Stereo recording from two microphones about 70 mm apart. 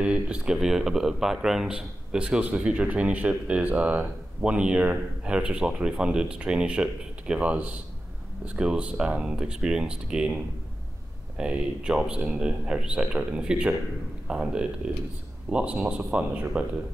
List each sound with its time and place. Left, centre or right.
0.0 s speech: centre